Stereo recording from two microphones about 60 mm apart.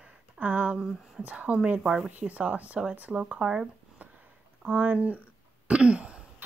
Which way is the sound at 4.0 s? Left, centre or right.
Right.